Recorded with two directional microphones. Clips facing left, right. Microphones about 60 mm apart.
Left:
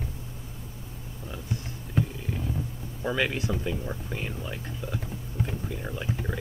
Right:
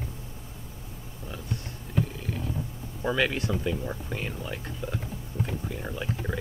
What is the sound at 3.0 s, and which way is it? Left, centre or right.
Speech, centre.